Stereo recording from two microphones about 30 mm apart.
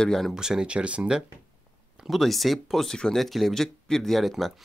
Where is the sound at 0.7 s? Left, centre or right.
Right.